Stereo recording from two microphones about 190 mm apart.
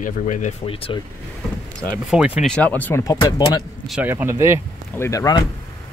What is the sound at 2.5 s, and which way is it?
Speech, 10° left (ahead or behind).